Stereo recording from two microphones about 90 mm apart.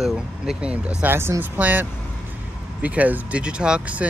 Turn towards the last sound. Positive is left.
turn(degrees=-10)  # may be behind; listen again after turning